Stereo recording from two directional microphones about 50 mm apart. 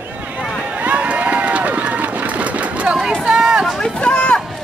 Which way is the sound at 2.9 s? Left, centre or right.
Centre.